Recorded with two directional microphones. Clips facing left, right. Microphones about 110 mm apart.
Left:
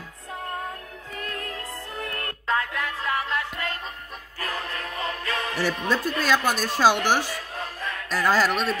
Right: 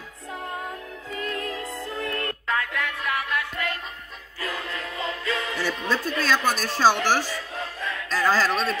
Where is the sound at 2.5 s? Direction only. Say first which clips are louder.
Left 2 dB; 30° left (ahead or behind); by 5.7 s 45° left (ahead or behind).